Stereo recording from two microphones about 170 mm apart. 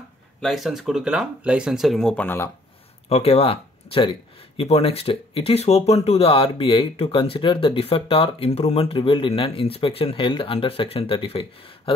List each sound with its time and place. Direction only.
0.4 s speech: centre (ahead or behind)
3.1 s speech: 40° left (ahead or behind)